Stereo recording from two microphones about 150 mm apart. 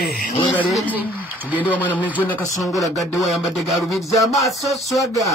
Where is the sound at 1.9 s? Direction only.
10° left (ahead or behind).